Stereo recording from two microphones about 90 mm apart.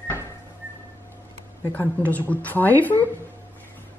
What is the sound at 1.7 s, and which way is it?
Speech, 20° left (ahead or behind).